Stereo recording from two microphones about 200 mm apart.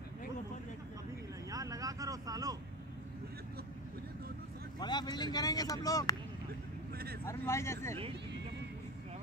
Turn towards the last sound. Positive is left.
turn(degrees=15)  # may be behind; listen again after turning